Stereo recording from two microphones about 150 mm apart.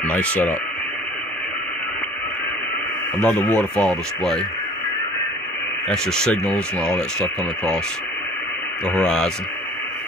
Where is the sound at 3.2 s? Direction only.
10° left (ahead or behind).